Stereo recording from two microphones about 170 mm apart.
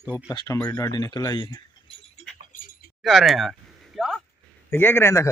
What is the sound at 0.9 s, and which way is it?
Speech, 25° left (ahead or behind).